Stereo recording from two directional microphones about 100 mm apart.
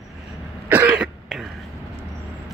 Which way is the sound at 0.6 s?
15° right (ahead or behind).